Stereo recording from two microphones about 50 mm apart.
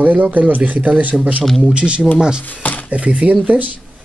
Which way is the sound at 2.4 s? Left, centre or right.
Left.